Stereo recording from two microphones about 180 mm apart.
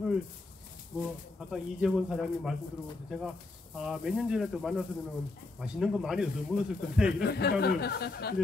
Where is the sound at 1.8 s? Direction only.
Centre (ahead or behind).